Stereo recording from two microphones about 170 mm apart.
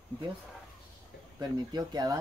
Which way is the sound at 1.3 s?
25° right (ahead or behind).